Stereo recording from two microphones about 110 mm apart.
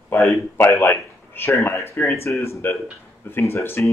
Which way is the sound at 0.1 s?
25° left (ahead or behind).